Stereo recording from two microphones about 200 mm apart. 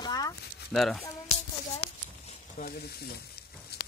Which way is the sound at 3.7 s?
55° left (ahead or behind).